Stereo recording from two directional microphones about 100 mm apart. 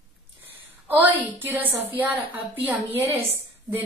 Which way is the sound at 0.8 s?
15° right (ahead or behind).